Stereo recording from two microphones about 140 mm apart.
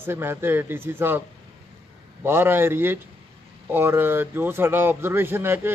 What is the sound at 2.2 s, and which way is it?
Speech, 15° right (ahead or behind).